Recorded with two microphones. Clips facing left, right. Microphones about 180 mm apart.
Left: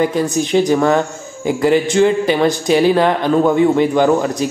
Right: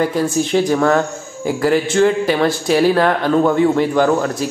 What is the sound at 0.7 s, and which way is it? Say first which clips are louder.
Speech: left 1 dB; 10° left (ahead or behind).